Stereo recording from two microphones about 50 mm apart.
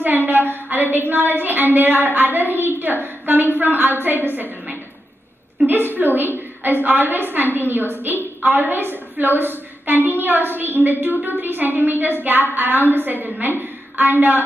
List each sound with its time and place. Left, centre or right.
0.0 s a sound: right
2.8 s a woman's voice: right
5.7 s a woman's voice: right